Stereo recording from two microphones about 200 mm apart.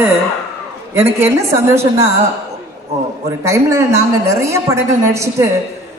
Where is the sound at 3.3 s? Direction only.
15° right (ahead or behind).